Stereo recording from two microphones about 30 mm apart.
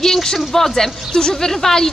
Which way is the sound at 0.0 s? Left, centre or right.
Centre.